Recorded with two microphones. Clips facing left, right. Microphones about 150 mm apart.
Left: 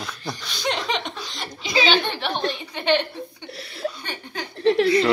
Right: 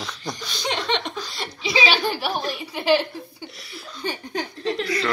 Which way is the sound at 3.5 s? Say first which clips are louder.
Left 11 dB; 60° left (ahead or behind).